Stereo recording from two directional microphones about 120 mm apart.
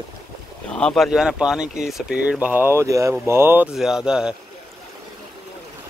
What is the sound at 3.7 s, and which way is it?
Speech, 5° right (ahead or behind).